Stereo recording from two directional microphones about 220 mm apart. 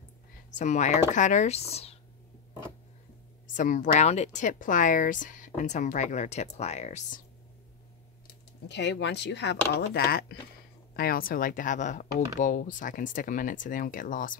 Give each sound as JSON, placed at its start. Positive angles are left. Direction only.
{"t": 0.6, "sound": "speech", "side_deg": 35}
{"t": 3.5, "sound": "speech", "side_deg": 35}
{"t": 8.3, "sound": "speech", "side_deg": 50}